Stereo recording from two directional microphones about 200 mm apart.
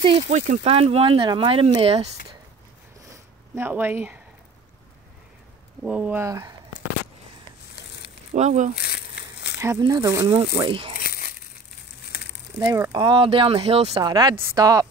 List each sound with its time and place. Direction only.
0.0 s speech: 30° right (ahead or behind)
3.1 s a sound: 10° right (ahead or behind)
5.9 s speech: 5° right (ahead or behind)
8.3 s speech: 35° right (ahead or behind)
8.7 s crumpling: 55° left (ahead or behind)
9.6 s speech: 15° right (ahead or behind)
11.0 s crumpling: 45° left (ahead or behind)
12.6 s speech: 15° right (ahead or behind)
13.9 s speech: 20° right (ahead or behind)